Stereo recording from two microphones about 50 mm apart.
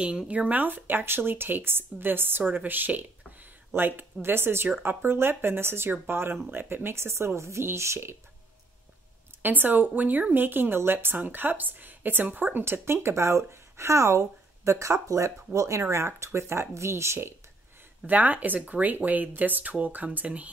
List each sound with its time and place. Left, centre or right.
0.3 s speech: right
9.4 s speech: right
12.6 s speech: right
18.0 s speech: right